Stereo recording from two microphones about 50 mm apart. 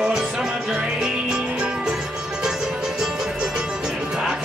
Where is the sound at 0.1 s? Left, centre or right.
Centre.